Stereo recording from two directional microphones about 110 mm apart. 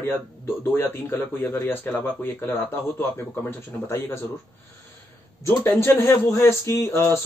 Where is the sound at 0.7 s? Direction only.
25° left (ahead or behind).